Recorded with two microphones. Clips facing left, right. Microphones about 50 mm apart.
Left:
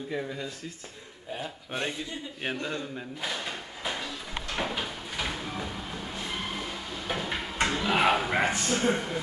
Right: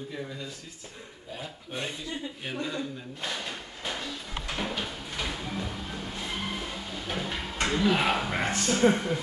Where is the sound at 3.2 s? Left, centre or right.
Centre.